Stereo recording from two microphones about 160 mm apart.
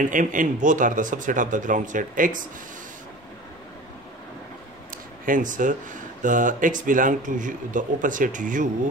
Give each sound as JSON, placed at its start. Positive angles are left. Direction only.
{"t": 0.0, "sound": "speech", "side_deg": -55}
{"t": 4.9, "sound": "speech", "side_deg": -60}